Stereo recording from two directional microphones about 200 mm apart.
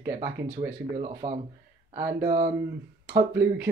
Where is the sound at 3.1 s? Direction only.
10° right (ahead or behind).